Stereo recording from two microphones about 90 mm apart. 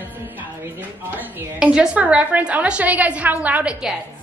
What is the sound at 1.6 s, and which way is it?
A woman's voice, 10° right (ahead or behind).